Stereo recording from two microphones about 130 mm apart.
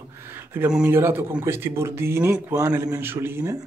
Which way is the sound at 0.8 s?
15° right (ahead or behind).